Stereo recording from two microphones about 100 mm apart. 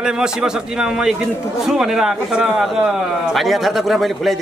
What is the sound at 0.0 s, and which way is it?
A man's voice, 5° right (ahead or behind).